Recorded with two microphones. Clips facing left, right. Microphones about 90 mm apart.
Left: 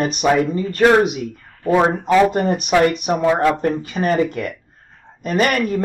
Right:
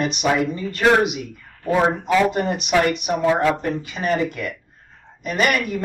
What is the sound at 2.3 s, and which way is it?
Speech, 40° left (ahead or behind).